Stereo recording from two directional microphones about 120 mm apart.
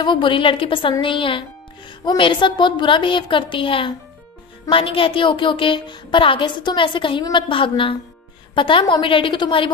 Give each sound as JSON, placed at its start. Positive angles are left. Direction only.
{"t": 0.0, "sound": "a woman's voice", "side_deg": 45}